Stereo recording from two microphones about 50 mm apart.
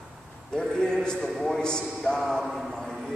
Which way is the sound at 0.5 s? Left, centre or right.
Centre.